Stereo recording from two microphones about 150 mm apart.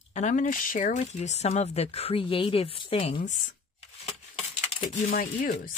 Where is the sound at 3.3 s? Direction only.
55° left (ahead or behind).